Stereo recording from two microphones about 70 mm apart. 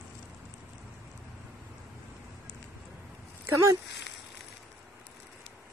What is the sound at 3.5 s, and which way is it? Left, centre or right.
Speech, right.